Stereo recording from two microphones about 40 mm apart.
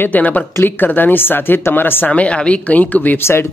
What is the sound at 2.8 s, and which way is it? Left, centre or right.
Speech, left.